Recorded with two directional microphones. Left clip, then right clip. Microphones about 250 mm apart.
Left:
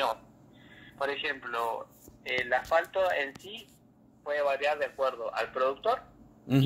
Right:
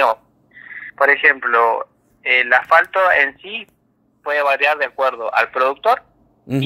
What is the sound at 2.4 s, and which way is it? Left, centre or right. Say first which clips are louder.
Speech: right 13 dB; right.